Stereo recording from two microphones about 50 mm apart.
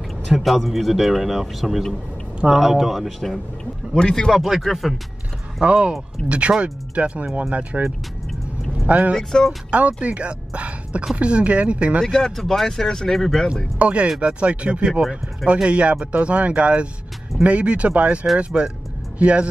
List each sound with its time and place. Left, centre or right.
0.3 s a man's voice: centre
4.3 s a man's voice: centre
5.6 s speech: centre
9.1 s speech: centre
9.7 s speech: right
12.0 s speech: centre
13.7 s speech: right